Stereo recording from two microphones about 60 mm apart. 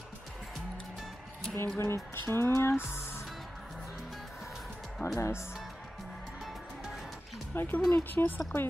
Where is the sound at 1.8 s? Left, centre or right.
Left.